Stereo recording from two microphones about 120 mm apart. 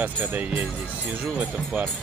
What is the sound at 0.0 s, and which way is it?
Speech, 15° right (ahead or behind).